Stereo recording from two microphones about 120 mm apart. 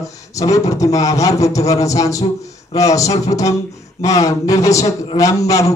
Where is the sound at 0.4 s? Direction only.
30° left (ahead or behind).